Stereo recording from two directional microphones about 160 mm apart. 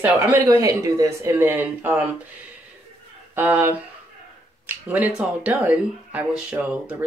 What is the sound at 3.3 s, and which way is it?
Speech, 15° right (ahead or behind).